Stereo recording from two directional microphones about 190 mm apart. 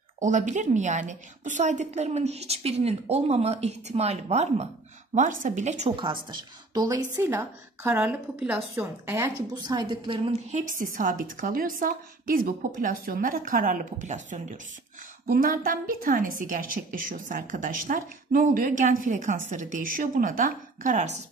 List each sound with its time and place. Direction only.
0.2 s a woman's voice: 40° right (ahead or behind)
10.7 s a woman's voice: 45° right (ahead or behind)
15.2 s a woman's voice: 50° right (ahead or behind)